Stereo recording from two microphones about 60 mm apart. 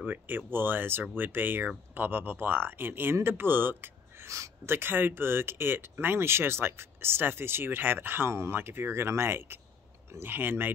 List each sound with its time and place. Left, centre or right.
0.0 s speech: right